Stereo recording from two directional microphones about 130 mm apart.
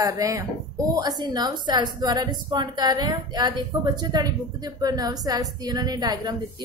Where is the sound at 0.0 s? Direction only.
25° right (ahead or behind).